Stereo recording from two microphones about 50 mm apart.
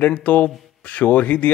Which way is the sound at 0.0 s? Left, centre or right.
Left.